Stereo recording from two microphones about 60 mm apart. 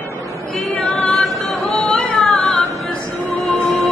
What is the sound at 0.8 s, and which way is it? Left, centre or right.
A capella, left.